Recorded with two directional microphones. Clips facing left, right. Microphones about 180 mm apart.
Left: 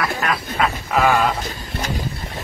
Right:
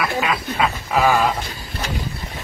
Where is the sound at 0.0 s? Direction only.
5° right (ahead or behind).